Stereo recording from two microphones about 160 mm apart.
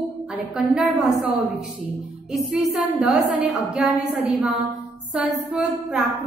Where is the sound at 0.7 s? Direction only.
Centre (ahead or behind).